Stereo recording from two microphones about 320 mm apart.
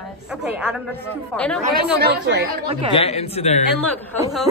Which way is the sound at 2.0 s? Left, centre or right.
Right.